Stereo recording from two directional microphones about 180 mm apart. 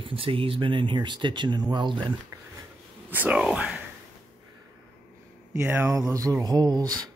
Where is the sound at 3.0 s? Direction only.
10° right (ahead or behind).